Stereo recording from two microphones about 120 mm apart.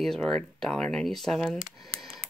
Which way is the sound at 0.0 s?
5° left (ahead or behind).